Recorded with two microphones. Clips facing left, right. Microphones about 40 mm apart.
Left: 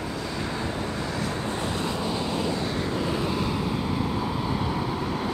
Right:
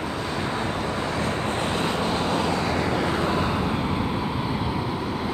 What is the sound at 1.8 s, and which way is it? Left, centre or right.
Vehicle, right.